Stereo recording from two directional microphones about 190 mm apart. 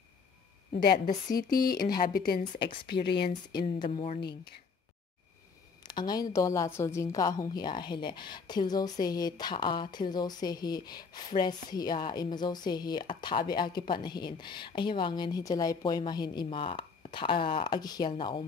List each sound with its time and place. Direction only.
0.7 s a woman's voice: 55° left (ahead or behind)
3.9 s speech: 40° left (ahead or behind)
4.2 s speech: 60° left (ahead or behind)
5.9 s a woman's voice: 20° left (ahead or behind)